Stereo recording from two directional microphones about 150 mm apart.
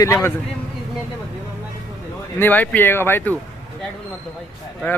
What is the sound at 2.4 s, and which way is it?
Speech, 10° left (ahead or behind).